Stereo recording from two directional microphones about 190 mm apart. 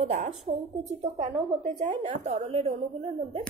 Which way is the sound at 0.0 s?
40° right (ahead or behind).